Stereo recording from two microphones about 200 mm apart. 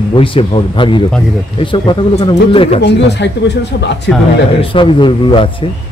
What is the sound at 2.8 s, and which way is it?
Speech, 60° left (ahead or behind).